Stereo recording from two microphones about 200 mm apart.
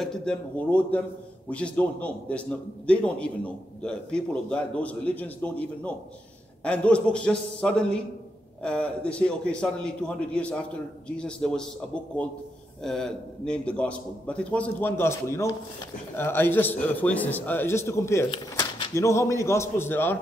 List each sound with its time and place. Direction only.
0.0 s a man's voice: 5° left (ahead or behind)
6.6 s a man's voice: 5° left (ahead or behind)
18.3 s speech: 25° left (ahead or behind)
18.9 s a man's voice: 15° left (ahead or behind)